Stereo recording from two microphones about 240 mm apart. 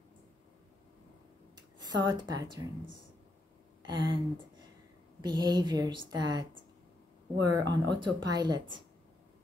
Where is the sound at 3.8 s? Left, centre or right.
Centre.